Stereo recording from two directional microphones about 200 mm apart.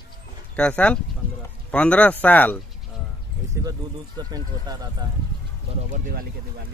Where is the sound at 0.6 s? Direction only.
5° left (ahead or behind).